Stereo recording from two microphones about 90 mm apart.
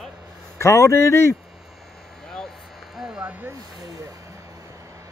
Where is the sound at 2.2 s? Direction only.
5° left (ahead or behind).